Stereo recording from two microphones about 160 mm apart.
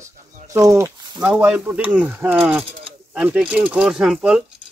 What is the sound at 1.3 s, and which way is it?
Speech, 5° right (ahead or behind).